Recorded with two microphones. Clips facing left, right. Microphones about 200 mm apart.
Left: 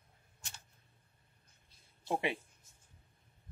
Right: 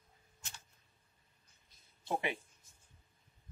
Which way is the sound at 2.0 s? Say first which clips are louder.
Left 2 dB; 30° left (ahead or behind).